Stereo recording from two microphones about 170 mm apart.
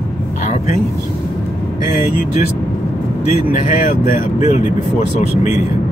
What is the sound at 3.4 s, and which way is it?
Speech, 55° left (ahead or behind).